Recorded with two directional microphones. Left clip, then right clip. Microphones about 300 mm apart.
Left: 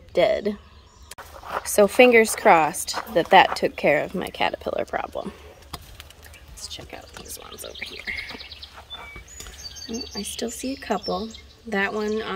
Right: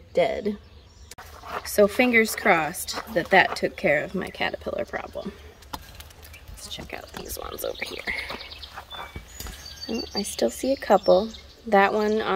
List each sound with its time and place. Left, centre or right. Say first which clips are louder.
0.1 s speech: left 3 dB; centre
6.9 s speech: right 3 dB; centre
7.3 s speech: right 6 dB; centre
10.1 s speech: right 8 dB; centre